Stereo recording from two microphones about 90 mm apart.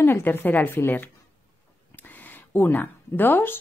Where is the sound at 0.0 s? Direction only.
25° left (ahead or behind).